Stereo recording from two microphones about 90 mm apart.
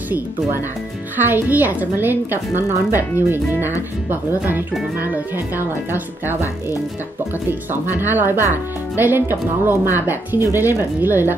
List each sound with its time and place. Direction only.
1.1 s speech: 20° right (ahead or behind)
4.1 s speech: 25° right (ahead or behind)
7.7 s speech: 25° right (ahead or behind)